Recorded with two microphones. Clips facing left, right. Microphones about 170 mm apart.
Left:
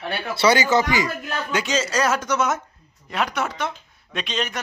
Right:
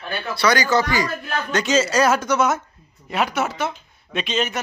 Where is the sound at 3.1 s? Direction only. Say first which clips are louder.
Right 3 dB; 5° right (ahead or behind).